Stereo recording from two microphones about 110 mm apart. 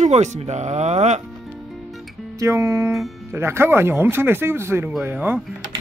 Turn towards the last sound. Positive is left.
turn(degrees=-20)  # may be behind; listen again after turning